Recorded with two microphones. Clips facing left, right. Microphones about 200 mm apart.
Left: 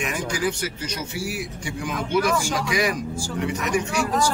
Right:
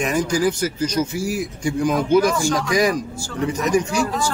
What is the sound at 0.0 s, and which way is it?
Speech, 40° right (ahead or behind).